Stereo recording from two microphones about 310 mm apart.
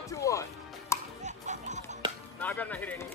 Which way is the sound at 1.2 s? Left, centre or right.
Right.